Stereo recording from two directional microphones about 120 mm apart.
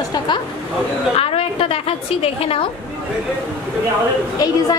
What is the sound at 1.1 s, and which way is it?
A woman's voice, 55° left (ahead or behind).